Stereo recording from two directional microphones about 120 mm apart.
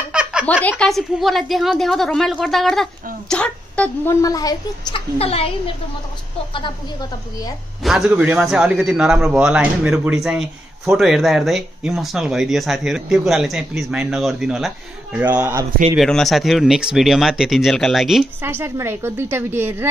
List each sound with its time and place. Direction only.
0.1 s a sound: 5° right (ahead or behind)
0.5 s speech: 15° left (ahead or behind)
4.1 s a woman's voice: 30° left (ahead or behind)
4.9 s a woman's voice: 55° left (ahead or behind)
6.5 s speech: 40° left (ahead or behind)
7.8 s speech: 5° right (ahead or behind)
15.1 s speech: 15° right (ahead or behind)
16.0 s speech: 5° left (ahead or behind)
18.4 s a woman's voice: 20° right (ahead or behind)